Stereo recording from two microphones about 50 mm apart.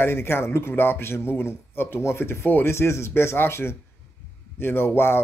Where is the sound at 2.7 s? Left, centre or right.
Left.